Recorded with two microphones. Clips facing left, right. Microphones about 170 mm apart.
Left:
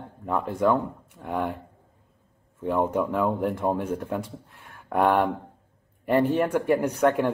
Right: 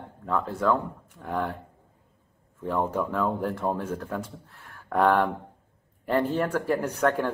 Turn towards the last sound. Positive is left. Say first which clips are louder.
# left 3 dB
turn(degrees=10)  # may be behind; listen again after turning